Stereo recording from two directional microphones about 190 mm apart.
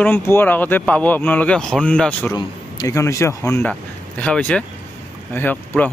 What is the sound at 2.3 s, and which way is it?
Speech, 20° left (ahead or behind).